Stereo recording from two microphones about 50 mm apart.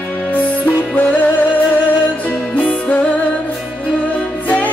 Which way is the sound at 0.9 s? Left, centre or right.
Left.